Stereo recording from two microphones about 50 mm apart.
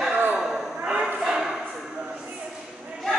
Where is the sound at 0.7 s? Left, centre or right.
Right.